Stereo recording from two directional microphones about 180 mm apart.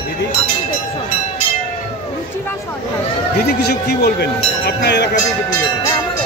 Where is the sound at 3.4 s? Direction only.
65° left (ahead or behind).